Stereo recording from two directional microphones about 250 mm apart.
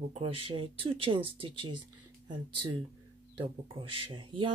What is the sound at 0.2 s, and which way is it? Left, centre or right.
Speech, right.